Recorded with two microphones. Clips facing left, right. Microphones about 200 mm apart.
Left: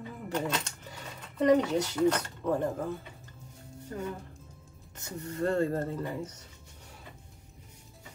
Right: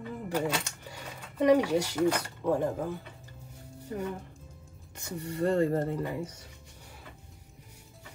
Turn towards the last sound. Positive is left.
turn(degrees=-15)  # may be behind; listen again after turning